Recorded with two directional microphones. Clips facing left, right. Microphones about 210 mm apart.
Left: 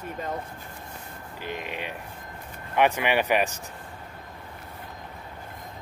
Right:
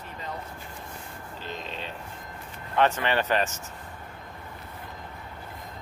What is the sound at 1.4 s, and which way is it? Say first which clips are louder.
Speech: left 4 dB; 15° left (ahead or behind).